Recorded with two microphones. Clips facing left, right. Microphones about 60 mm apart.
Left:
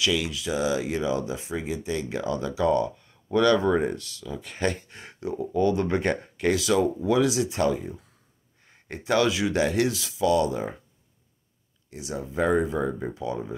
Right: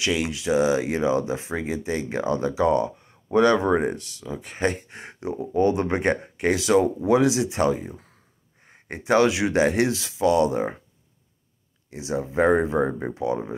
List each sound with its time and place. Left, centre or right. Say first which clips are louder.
0.0 s speech: right 1 dB; right
11.9 s speech: right 5 dB; right